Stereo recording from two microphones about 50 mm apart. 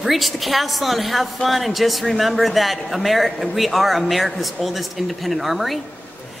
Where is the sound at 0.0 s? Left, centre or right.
Centre.